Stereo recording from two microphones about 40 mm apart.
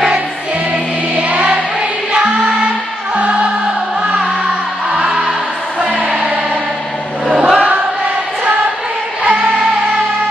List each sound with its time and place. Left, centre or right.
1.1 s music: right
4.9 s music: centre
7.2 s choir: centre